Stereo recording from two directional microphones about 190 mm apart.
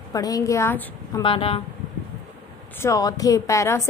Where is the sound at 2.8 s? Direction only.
20° left (ahead or behind).